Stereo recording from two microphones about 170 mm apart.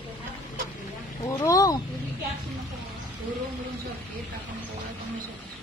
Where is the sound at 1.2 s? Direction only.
20° left (ahead or behind).